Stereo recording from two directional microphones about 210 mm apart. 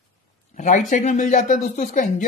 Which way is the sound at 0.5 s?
35° left (ahead or behind).